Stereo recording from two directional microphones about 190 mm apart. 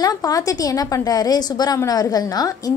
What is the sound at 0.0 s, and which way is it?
A woman's voice, 20° left (ahead or behind).